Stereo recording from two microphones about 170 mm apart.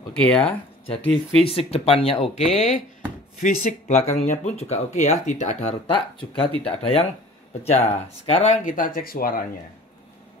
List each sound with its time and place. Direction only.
0.2 s speech: 5° left (ahead or behind)
0.8 s speech: 35° left (ahead or behind)
3.3 s speech: 55° left (ahead or behind)
5.9 s speech: 30° left (ahead or behind)
8.3 s speech: 45° left (ahead or behind); by 9.5 s 60° left (ahead or behind)